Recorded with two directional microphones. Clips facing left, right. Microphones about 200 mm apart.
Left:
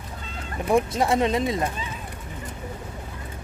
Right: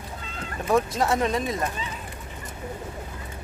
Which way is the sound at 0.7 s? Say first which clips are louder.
Left 1 dB; 15° left (ahead or behind).